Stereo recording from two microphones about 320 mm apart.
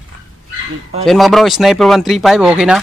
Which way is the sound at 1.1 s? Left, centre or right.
Centre.